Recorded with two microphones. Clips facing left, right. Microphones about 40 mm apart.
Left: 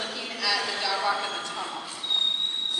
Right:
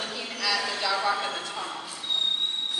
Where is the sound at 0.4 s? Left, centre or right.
Centre.